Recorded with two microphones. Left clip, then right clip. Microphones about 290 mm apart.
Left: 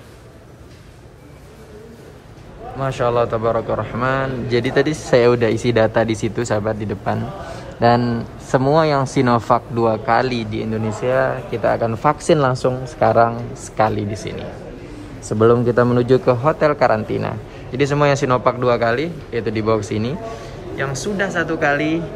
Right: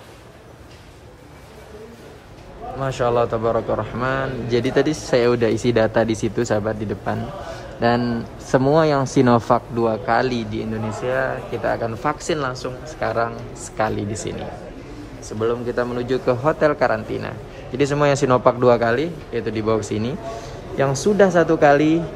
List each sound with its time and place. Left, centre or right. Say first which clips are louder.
2.8 s a man's voice: left 1 dB; centre
15.4 s speech: left 8 dB; centre
16.4 s a man's voice: even; centre